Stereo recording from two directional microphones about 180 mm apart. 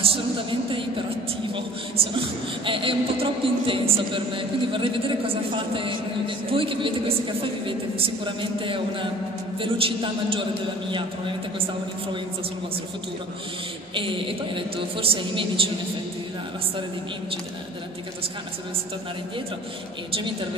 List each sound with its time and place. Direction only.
0.0 s speech: 30° right (ahead or behind)
2.6 s a woman's voice: 30° right (ahead or behind)
13.9 s a woman's voice: 30° right (ahead or behind)